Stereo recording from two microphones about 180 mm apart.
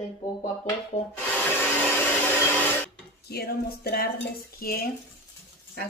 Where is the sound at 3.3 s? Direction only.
60° left (ahead or behind).